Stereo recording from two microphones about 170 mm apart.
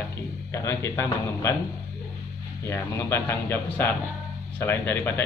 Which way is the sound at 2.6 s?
15° left (ahead or behind).